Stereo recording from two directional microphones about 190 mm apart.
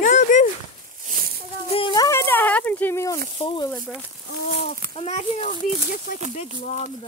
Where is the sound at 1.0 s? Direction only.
50° right (ahead or behind).